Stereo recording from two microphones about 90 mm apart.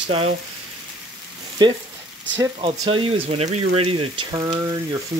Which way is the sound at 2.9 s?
90° right.